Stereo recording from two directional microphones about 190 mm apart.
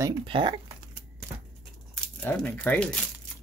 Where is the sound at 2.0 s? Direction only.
5° left (ahead or behind).